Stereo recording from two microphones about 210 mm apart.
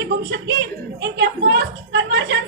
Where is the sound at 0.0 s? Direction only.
60° right (ahead or behind).